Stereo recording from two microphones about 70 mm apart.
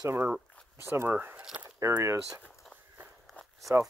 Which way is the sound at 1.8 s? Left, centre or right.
Right.